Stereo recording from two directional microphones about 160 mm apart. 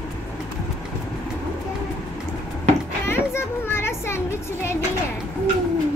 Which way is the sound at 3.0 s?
15° left (ahead or behind).